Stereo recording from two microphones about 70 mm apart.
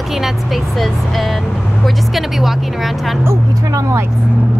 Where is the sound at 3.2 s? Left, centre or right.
Right.